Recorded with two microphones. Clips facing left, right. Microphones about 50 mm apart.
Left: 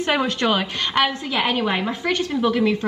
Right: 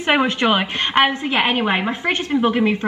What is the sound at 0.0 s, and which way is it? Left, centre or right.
A woman's voice, right.